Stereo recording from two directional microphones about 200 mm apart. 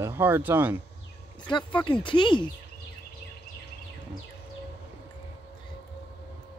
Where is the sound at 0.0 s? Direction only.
10° right (ahead or behind).